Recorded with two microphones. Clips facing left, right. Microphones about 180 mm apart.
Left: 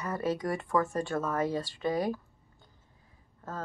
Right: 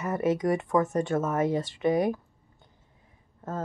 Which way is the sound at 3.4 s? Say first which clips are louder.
Right 6 dB; 20° right (ahead or behind).